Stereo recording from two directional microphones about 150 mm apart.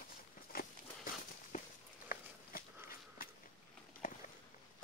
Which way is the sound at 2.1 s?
70° left (ahead or behind).